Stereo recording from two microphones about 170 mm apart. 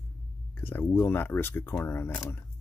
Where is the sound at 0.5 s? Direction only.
10° left (ahead or behind).